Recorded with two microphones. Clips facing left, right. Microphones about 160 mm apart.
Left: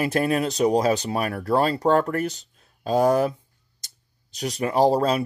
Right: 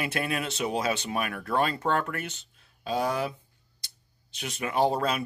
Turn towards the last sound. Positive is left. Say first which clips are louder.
# left 6 dB
turn(degrees=35)  # may be behind; listen again after turning